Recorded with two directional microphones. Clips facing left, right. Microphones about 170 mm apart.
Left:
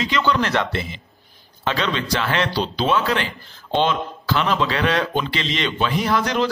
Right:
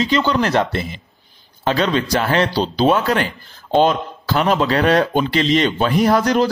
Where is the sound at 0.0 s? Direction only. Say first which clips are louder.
Right 4 dB; 35° right (ahead or behind).